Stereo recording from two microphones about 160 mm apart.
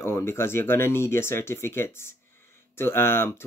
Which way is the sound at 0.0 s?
15° left (ahead or behind).